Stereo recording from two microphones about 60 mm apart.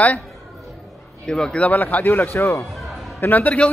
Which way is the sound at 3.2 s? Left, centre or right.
Left.